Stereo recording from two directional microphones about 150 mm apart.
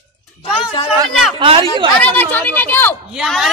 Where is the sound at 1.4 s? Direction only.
35° right (ahead or behind).